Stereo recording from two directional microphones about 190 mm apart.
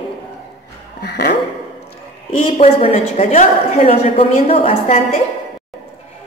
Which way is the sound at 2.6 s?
30° left (ahead or behind).